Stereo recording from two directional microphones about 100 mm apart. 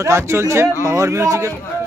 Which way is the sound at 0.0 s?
30° right (ahead or behind).